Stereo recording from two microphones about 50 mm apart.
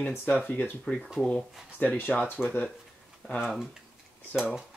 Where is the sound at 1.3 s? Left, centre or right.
Left.